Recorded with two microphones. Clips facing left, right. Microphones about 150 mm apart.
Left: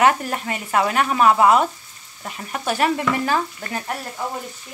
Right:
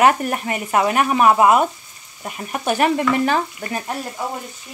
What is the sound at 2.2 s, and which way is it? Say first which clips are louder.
Speech: right 3 dB; 15° right (ahead or behind).